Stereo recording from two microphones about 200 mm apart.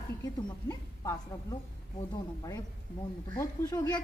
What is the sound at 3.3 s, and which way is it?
Speech, 15° left (ahead or behind).